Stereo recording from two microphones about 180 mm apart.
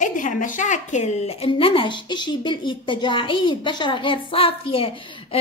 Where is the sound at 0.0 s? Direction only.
45° left (ahead or behind).